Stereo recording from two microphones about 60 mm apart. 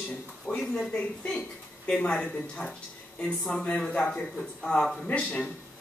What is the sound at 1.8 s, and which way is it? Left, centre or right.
Speech, centre.